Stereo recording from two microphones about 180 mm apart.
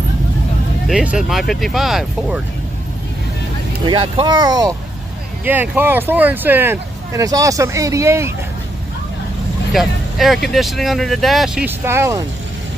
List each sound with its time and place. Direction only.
0.8 s speech: 5° right (ahead or behind)
3.8 s speech: 25° right (ahead or behind)
9.7 s speech: centre (ahead or behind)